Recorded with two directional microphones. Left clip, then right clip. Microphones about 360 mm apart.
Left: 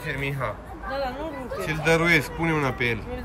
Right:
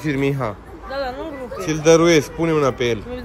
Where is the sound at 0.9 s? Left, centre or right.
Right.